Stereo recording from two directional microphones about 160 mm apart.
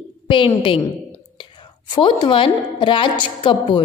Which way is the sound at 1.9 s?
30° left (ahead or behind).